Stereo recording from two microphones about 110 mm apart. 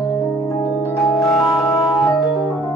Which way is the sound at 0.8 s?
25° left (ahead or behind).